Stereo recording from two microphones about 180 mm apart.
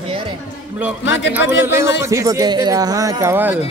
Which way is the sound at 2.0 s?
15° right (ahead or behind).